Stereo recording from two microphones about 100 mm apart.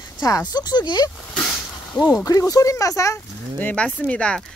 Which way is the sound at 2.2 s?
35° left (ahead or behind).